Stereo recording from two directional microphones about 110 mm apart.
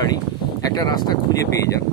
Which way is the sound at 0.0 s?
35° left (ahead or behind).